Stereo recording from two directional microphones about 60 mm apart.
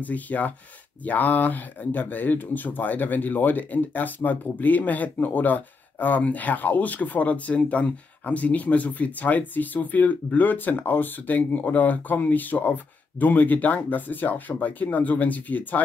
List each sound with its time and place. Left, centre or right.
0.0 s speech: left